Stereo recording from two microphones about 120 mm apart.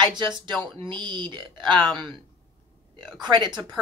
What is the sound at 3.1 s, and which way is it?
Speech, 40° right (ahead or behind).